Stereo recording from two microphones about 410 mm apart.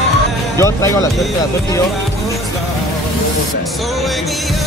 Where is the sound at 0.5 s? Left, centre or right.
Centre.